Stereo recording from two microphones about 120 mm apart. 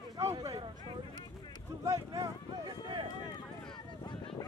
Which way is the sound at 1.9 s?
30° right (ahead or behind).